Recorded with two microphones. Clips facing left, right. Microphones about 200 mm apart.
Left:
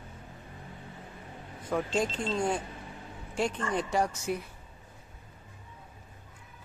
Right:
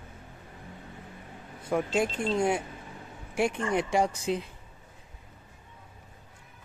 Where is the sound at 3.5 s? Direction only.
15° right (ahead or behind).